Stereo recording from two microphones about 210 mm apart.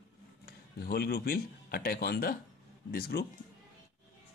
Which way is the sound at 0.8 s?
50° left (ahead or behind).